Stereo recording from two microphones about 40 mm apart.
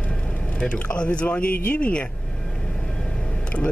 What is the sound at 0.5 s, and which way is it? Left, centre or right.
Speech, left.